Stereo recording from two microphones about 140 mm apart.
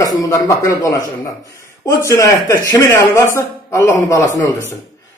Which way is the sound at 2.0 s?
20° left (ahead or behind).